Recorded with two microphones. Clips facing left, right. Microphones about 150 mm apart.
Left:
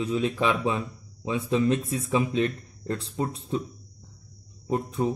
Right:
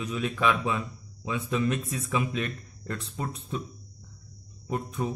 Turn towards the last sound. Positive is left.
turn(degrees=30)  # may be behind; listen again after turning